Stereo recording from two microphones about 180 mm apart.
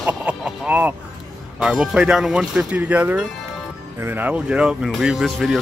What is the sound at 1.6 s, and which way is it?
Speech, centre (ahead or behind).